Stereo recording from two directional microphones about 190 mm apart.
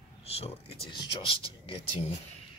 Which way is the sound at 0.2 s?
30° left (ahead or behind).